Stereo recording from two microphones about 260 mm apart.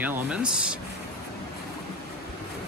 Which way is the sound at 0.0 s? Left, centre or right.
Centre.